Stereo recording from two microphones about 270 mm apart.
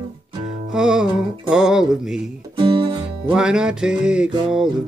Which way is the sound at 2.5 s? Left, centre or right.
Centre.